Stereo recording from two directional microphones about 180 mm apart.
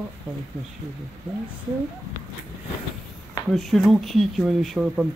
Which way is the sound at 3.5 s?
Centre (ahead or behind).